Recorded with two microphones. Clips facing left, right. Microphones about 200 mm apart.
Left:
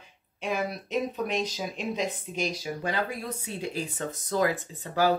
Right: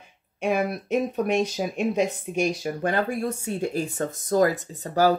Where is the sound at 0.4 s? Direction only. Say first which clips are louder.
Right 6 dB; 50° right (ahead or behind).